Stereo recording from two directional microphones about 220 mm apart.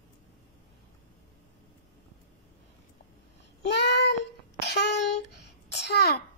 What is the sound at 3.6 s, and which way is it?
Child singing, 50° left (ahead or behind).